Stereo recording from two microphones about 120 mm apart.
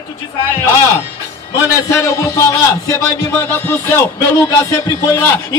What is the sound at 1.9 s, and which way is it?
Speech, 25° left (ahead or behind).